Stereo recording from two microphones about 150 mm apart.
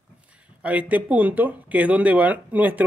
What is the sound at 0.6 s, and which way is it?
Speech, 10° right (ahead or behind).